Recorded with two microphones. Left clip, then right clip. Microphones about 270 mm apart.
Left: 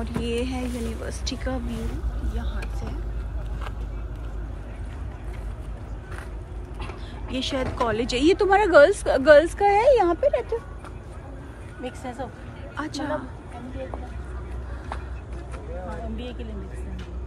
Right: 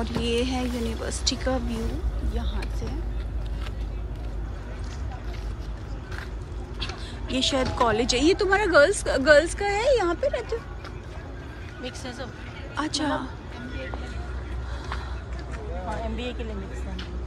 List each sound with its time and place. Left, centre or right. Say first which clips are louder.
0.0 s speech: right 2 dB; centre
7.2 s speech: right 3 dB; centre
11.8 s speech: left 3 dB; left
12.7 s speech: right 3 dB; centre